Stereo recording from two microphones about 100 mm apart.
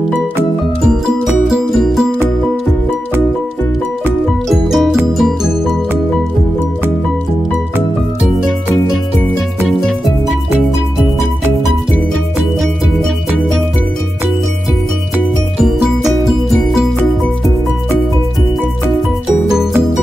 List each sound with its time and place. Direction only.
0.8 s music: 5° right (ahead or behind)
4.5 s music: centre (ahead or behind)